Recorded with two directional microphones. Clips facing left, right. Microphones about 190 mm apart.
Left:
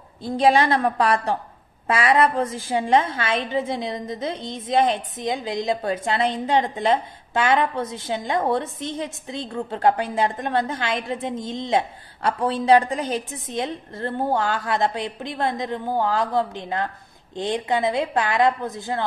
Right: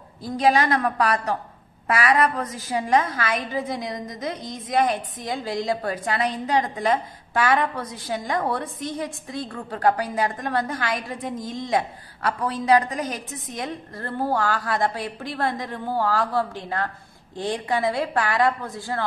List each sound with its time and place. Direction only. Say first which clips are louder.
0.2 s a woman's voice: left 2 dB; 25° left (ahead or behind)